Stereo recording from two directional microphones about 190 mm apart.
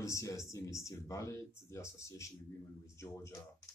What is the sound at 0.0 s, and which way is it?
Speech, 15° left (ahead or behind).